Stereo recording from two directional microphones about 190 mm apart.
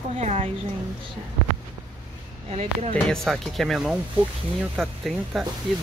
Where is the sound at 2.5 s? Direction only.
40° right (ahead or behind).